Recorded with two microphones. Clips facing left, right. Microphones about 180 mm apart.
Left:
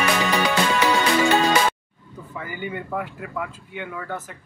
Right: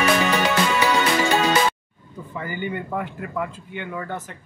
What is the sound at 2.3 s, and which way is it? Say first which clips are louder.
A man's voice: right 3 dB; 5° left (ahead or behind).